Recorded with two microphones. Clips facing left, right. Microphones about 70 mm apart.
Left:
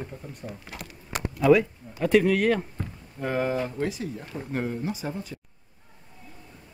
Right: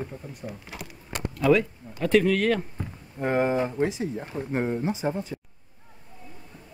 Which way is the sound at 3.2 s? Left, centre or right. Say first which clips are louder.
Right 3 dB; right.